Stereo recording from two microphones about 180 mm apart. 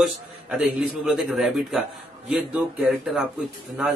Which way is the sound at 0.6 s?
5° right (ahead or behind).